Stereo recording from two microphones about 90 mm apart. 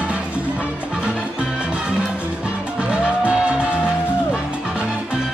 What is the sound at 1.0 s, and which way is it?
Music, 10° right (ahead or behind).